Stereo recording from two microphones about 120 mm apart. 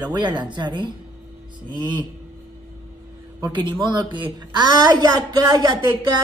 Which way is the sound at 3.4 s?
35° right (ahead or behind).